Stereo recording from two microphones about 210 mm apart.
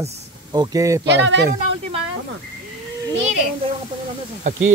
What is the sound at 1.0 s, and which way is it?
Speech, 55° right (ahead or behind).